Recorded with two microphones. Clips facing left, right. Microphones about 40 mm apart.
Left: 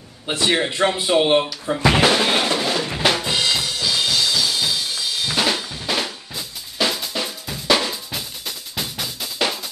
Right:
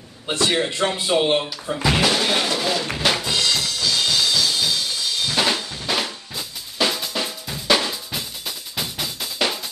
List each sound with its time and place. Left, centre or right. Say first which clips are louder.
0.3 s speech: left 1 dB; centre
1.9 s music: left 3 dB; left; by 3.3 s centre
3.3 s drum kit: left 1 dB; centre